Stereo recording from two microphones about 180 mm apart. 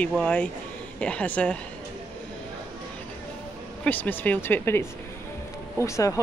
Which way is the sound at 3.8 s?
10° left (ahead or behind).